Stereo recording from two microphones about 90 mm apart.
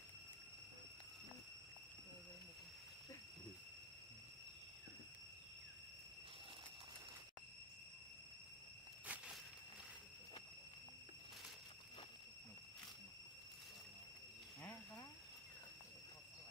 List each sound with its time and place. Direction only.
9.0 s walk: 15° right (ahead or behind)